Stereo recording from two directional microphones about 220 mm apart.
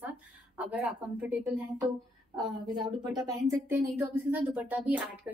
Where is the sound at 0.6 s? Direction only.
5° right (ahead or behind).